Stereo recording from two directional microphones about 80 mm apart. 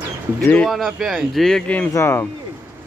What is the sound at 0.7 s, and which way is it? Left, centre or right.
Speech, centre.